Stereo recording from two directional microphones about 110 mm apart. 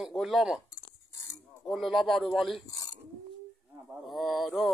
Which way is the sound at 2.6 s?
35° left (ahead or behind).